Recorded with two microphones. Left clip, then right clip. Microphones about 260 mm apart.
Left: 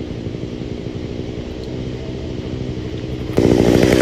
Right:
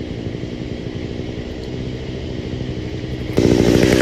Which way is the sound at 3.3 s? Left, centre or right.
Centre.